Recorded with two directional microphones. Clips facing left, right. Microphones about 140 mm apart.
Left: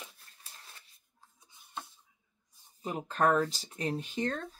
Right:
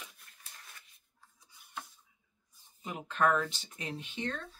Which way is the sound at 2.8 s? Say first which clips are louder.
Left 2 dB; 40° left (ahead or behind).